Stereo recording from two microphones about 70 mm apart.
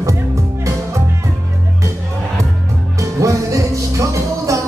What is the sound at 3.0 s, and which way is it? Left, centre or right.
Music, right.